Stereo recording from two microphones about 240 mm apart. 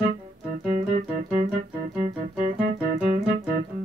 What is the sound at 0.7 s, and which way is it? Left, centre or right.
Music, right.